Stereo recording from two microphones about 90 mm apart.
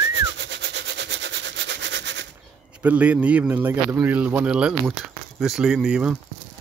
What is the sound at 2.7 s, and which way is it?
A man's voice, 15° right (ahead or behind).